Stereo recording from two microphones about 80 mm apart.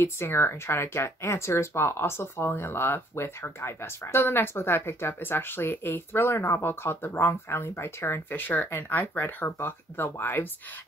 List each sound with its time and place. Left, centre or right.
0.0 s speech: left